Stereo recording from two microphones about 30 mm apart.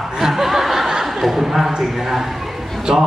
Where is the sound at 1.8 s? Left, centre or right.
Centre.